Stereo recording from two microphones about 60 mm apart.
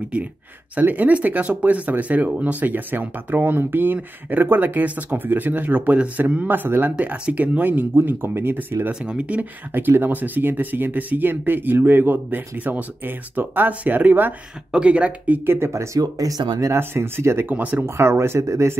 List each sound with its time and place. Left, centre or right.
0.7 s speech: right
9.0 s speech: right
14.7 s speech: centre
15.4 s speech: right
15.7 s speech: right
16.7 s speech: right
17.5 s speech: right
17.8 s speech: right